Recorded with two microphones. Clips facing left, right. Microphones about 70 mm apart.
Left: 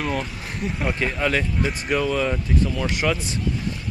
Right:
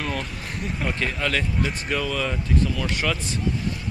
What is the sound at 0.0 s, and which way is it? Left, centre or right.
Speech, centre.